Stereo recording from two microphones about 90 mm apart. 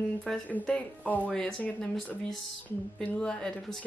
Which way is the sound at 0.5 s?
15° left (ahead or behind).